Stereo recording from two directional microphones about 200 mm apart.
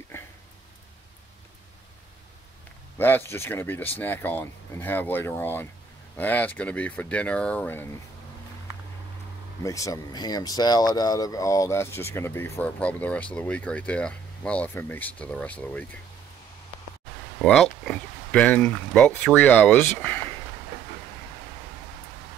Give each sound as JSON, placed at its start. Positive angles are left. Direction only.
{"t": 3.0, "sound": "speech", "side_deg": 10}
{"t": 9.6, "sound": "speech", "side_deg": 15}
{"t": 17.4, "sound": "speech", "side_deg": 0}